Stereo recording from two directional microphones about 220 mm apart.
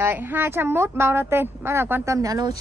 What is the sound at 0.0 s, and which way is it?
A woman's voice, 10° right (ahead or behind).